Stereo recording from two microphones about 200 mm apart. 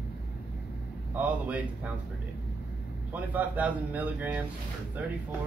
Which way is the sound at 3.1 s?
10° right (ahead or behind).